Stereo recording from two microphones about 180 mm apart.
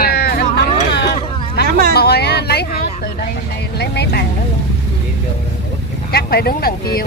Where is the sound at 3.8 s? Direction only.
65° left (ahead or behind).